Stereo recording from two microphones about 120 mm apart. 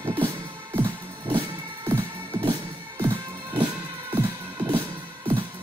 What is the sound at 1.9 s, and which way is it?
Music, 25° right (ahead or behind).